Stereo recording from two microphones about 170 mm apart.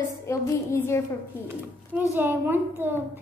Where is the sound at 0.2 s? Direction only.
15° left (ahead or behind).